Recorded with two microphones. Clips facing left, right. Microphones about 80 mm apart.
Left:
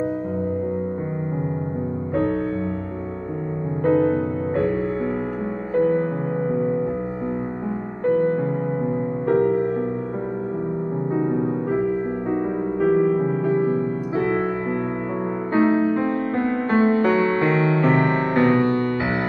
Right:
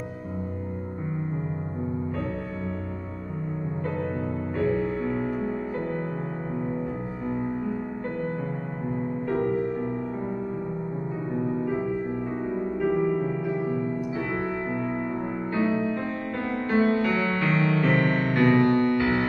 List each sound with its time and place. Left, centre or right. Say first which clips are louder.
3.8 s music: left 13 dB; left
9.3 s music: left 7 dB; left
12.8 s music: left 6 dB; left
15.5 s music: left 8 dB; left
17.2 s music: left 6 dB; left